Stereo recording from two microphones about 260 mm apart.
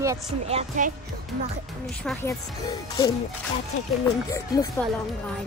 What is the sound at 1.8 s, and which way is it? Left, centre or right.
Speech, centre.